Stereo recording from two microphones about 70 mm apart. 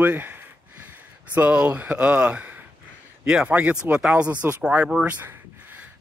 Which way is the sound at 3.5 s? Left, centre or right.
Right.